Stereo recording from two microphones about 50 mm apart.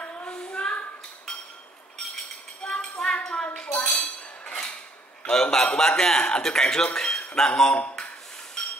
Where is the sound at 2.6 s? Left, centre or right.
Centre.